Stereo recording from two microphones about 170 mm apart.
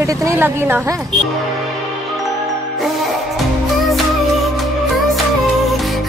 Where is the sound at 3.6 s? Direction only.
Centre (ahead or behind).